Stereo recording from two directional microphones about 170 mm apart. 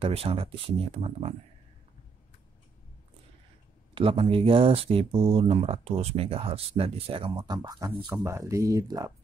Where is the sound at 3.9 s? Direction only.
30° right (ahead or behind).